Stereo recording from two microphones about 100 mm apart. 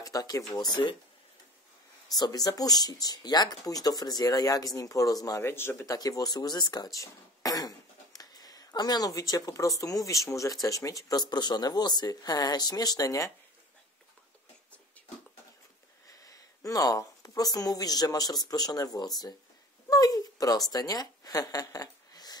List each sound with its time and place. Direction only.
0.0 s speech: 40° left (ahead or behind)
2.1 s speech: 40° left (ahead or behind)
5.4 s speech: 25° left (ahead or behind)
5.9 s speech: 35° left (ahead or behind)
16.1 s speech: 35° left (ahead or behind)
19.9 s a sound: 35° left (ahead or behind)
20.7 s speech: 40° left (ahead or behind)